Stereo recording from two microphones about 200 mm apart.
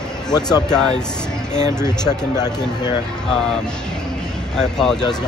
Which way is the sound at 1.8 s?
20° left (ahead or behind).